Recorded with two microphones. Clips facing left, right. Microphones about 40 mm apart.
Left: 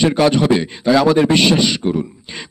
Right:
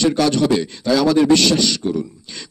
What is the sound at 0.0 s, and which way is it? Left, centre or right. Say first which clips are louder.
A man's voice: left 2 dB; left.